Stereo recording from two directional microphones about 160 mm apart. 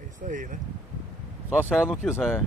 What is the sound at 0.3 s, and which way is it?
Speech, 55° right (ahead or behind).